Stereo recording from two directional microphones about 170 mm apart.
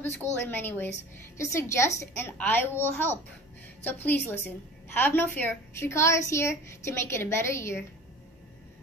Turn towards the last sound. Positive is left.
turn(degrees=15)  # may be behind; listen again after turning